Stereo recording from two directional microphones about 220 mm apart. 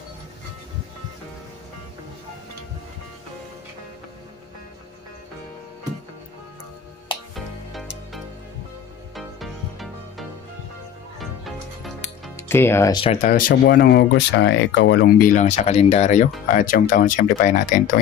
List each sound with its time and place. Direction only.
7.3 s music: centre (ahead or behind)
12.4 s speech: 10° left (ahead or behind)
13.0 s speech: 30° left (ahead or behind); by 15.2 s 55° left (ahead or behind)
15.2 s speech: 35° left (ahead or behind)